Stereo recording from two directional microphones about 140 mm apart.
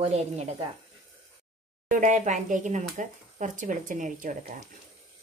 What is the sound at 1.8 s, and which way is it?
Speech, 65° right (ahead or behind).